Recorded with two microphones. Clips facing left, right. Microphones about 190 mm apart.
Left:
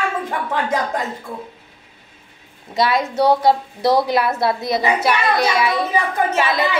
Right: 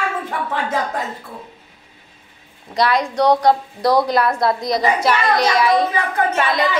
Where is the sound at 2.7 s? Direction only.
Centre (ahead or behind).